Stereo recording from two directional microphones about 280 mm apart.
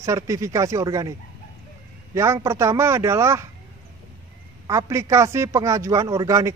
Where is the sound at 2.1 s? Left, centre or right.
Centre.